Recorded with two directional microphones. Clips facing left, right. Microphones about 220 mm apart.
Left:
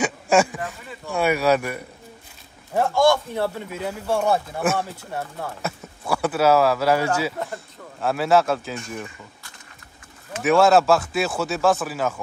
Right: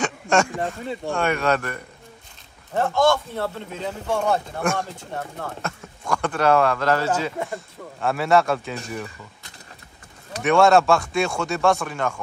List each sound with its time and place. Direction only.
0.0 s a sound: 5° left (ahead or behind)
0.6 s speech: 30° right (ahead or behind)
1.1 s a man's voice: 5° left (ahead or behind)
10.4 s speech: centre (ahead or behind)